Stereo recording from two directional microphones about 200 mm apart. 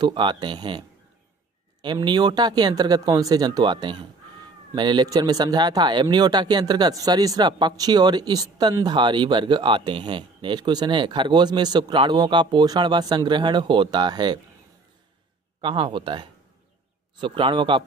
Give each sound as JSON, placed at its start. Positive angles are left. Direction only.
{"t": 0.0, "sound": "speech", "side_deg": -25}
{"t": 15.6, "sound": "speech", "side_deg": -25}